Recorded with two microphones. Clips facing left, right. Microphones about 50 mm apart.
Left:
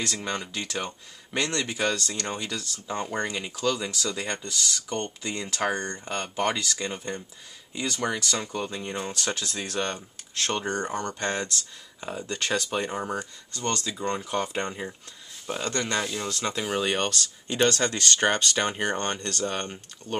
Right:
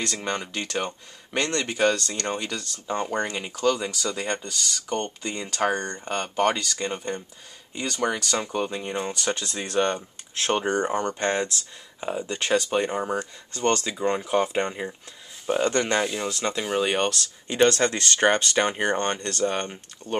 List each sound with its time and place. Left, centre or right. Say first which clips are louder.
0.0 s speech: right 2 dB; centre
3.3 s speech: right 3 dB; centre
8.5 s speech: right 4 dB; centre
11.1 s speech: right 4 dB; centre
13.5 s speech: right 6 dB; right
13.9 s a man's voice: right 5 dB; centre
16.0 s speech: right 3 dB; centre